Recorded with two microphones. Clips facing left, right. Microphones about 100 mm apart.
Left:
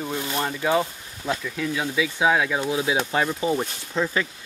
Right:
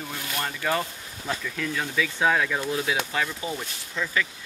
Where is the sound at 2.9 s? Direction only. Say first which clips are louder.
Left 5 dB; 35° left (ahead or behind).